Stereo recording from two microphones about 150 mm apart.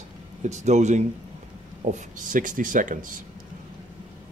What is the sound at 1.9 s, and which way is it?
Speech, 60° right (ahead or behind).